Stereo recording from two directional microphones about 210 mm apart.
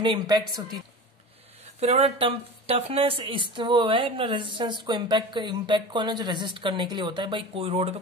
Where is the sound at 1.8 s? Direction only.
30° right (ahead or behind).